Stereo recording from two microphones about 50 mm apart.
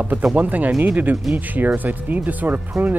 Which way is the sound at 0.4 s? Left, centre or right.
Right.